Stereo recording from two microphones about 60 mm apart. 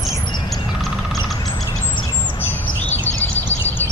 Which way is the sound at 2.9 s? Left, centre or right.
Left.